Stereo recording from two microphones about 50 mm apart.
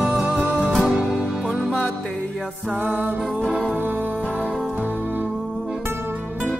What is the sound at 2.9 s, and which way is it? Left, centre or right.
Music, right.